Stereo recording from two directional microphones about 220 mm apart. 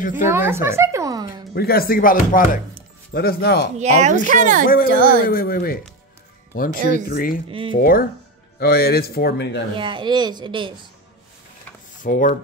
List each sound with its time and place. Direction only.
0.1 s speech: 10° right (ahead or behind)
1.5 s speech: 45° left (ahead or behind)
3.7 s speech: 30° right (ahead or behind)
5.2 s speech: 40° left (ahead or behind)
7.4 s speech: 25° right (ahead or behind)
7.7 s speech: 40° left (ahead or behind)
9.8 s speech: 20° right (ahead or behind)
12.0 s speech: 35° left (ahead or behind)